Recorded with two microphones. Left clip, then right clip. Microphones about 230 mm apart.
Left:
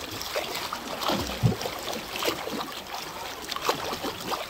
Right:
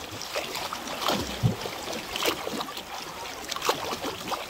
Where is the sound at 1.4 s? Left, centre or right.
Left.